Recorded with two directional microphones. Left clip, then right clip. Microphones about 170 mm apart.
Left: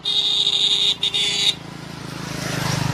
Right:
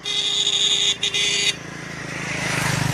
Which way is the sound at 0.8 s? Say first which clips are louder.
Left 1 dB; 80° left.